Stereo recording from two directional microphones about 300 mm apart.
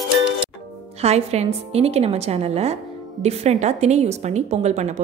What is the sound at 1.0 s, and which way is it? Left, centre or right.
A woman's voice, right.